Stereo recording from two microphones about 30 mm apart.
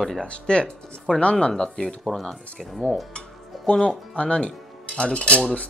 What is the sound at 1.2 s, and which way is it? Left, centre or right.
Speech, left.